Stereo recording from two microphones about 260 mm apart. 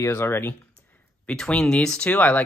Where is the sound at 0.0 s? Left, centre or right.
Centre.